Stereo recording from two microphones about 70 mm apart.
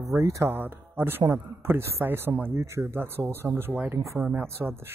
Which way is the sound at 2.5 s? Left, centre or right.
Right.